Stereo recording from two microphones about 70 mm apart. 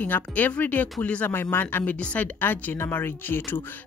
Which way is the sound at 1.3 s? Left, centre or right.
Left.